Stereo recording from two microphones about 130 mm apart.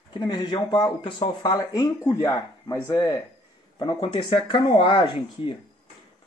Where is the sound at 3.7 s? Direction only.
35° left (ahead or behind).